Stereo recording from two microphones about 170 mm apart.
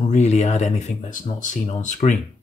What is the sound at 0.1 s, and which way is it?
Speech, 40° left (ahead or behind).